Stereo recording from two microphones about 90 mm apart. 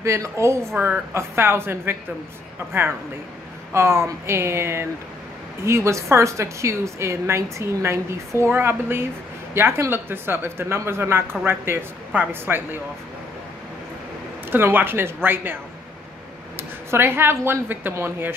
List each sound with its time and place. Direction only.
0.0 s a woman's voice: 30° right (ahead or behind)
0.7 s a woman's voice: 15° right (ahead or behind)
1.1 s a woman's voice: 30° right (ahead or behind)
14.5 s speech: 20° right (ahead or behind)
16.5 s speech: 25° right (ahead or behind)